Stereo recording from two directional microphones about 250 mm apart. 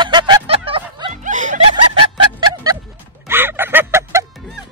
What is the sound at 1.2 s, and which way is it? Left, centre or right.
Snicker, right.